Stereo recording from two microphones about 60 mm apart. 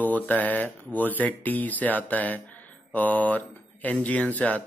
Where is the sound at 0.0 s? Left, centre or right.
Left.